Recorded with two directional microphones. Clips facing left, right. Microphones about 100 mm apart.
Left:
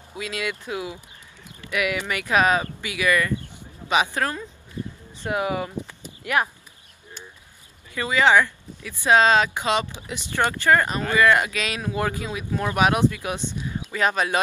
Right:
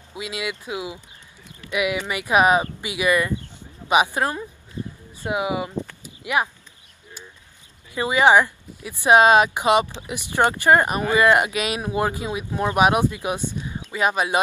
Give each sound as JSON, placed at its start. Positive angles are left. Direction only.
{"t": 0.1, "sound": "speech", "side_deg": -15}
{"t": 6.0, "sound": "a sound", "side_deg": -15}
{"t": 7.9, "sound": "speech", "side_deg": -20}